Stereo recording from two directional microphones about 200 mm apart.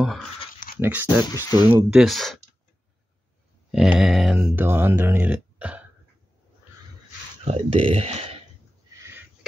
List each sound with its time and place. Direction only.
0.0 s speech: centre (ahead or behind)
1.2 s speech: 20° left (ahead or behind)
1.9 s speech: centre (ahead or behind)
3.7 s speech: centre (ahead or behind)
7.4 s speech: 30° right (ahead or behind)
8.9 s a sound: 15° right (ahead or behind)